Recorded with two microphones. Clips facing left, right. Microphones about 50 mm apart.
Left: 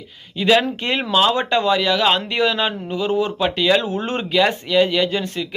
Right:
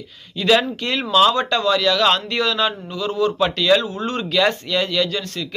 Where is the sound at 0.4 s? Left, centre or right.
Centre.